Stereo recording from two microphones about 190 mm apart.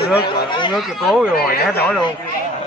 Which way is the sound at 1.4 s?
55° left (ahead or behind).